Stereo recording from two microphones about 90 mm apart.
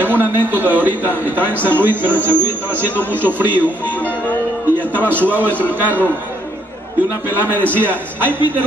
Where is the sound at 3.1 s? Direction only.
20° right (ahead or behind).